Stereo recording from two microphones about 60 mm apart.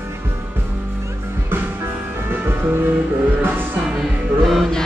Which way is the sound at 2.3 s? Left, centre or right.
Right.